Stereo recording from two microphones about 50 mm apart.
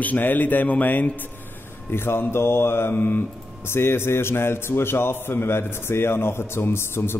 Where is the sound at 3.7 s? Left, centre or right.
Left.